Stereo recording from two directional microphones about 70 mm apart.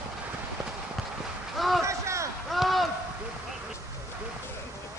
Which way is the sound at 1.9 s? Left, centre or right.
Right.